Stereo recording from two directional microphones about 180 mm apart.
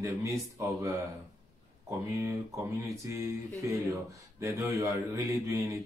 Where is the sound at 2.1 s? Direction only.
15° right (ahead or behind).